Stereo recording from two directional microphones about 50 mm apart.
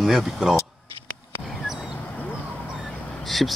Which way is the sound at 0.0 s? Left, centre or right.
Centre.